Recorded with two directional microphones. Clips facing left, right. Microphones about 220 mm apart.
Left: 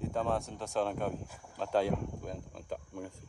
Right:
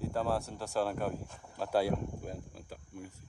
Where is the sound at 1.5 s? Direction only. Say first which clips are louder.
Even; 5° right (ahead or behind).